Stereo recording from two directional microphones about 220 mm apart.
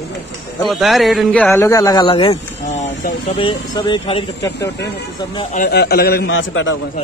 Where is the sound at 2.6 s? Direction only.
35° left (ahead or behind).